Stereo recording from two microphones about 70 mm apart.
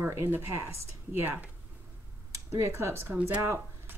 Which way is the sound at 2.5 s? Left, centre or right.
Right.